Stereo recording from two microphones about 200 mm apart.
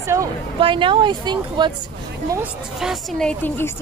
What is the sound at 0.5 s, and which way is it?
A woman's voice, 25° right (ahead or behind).